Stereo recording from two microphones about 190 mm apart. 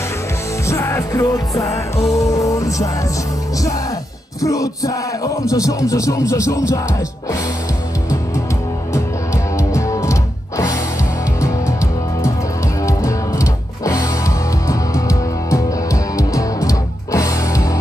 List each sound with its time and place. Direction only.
0.7 s music: 15° left (ahead or behind)
4.4 s speech: 15° left (ahead or behind)
9.6 s music: 15° left (ahead or behind)
11.4 s music: 15° left (ahead or behind)